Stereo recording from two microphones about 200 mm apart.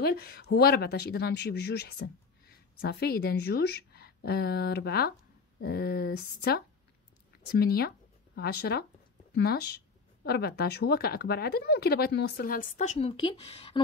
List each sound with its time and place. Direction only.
0.0 s speech: 50° left (ahead or behind); by 13.7 s 25° left (ahead or behind)